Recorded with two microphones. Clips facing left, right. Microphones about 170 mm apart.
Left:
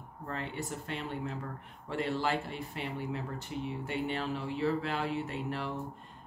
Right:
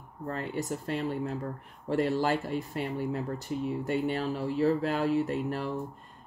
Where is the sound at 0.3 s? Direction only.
40° right (ahead or behind).